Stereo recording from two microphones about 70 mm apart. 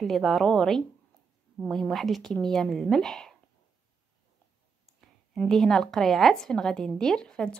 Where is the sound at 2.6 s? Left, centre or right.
Centre.